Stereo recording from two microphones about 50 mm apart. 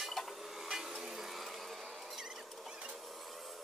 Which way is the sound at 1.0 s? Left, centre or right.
Centre.